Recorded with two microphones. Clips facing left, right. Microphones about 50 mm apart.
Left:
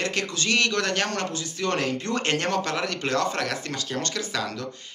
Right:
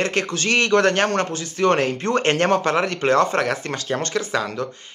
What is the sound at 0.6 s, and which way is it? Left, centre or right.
Speech, right.